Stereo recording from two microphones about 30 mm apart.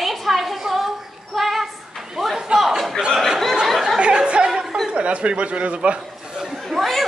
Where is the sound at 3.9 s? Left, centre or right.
Right.